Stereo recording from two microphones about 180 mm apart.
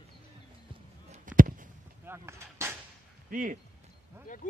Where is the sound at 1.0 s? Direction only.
40° right (ahead or behind).